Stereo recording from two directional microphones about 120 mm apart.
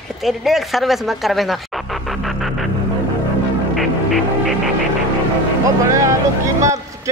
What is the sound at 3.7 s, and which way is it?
Music, centre (ahead or behind).